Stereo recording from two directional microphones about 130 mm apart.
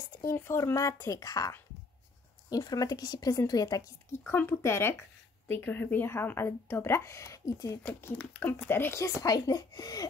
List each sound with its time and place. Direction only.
0.3 s speech: 20° left (ahead or behind)
4.3 s speech: 20° left (ahead or behind)